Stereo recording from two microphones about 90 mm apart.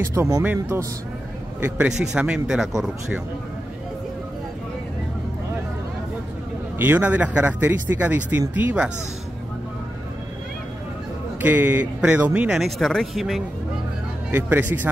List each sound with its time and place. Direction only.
0.0 s speech: 30° right (ahead or behind)
1.6 s speech: 10° right (ahead or behind)
6.8 s speech: 20° right (ahead or behind)
11.4 s speech: 20° right (ahead or behind); by 13.4 s centre (ahead or behind)
14.3 s speech: 20° right (ahead or behind)